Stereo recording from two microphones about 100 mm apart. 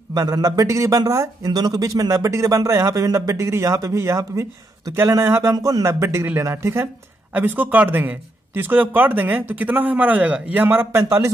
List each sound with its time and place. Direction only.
0.1 s speech: 40° right (ahead or behind)